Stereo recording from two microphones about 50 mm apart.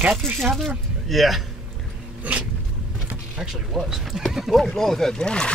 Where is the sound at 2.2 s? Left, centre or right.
Right.